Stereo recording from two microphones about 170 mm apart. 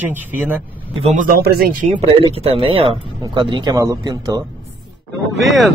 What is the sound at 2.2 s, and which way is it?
Speech, 35° right (ahead or behind).